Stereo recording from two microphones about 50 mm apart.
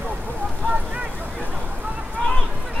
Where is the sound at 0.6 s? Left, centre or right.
Right.